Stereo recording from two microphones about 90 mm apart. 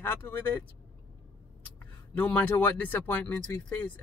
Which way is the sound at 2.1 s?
20° left (ahead or behind).